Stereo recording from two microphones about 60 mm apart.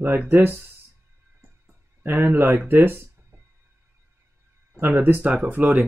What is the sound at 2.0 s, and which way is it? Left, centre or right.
Speech, right.